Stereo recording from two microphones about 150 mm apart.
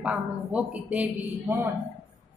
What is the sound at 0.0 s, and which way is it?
A woman's voice, 10° right (ahead or behind).